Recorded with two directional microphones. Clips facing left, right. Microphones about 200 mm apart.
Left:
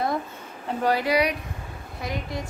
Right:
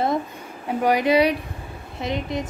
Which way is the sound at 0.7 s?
15° right (ahead or behind).